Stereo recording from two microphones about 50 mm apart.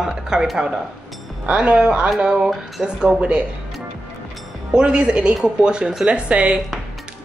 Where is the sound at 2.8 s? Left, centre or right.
Centre.